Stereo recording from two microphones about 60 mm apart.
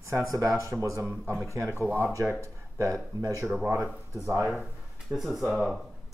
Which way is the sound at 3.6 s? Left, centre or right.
Right.